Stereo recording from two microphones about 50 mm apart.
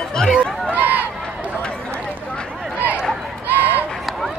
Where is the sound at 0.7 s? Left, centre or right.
Right.